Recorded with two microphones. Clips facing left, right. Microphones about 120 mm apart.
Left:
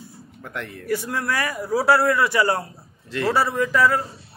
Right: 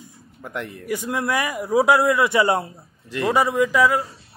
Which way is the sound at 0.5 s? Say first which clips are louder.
Left 1 dB; 15° right (ahead or behind).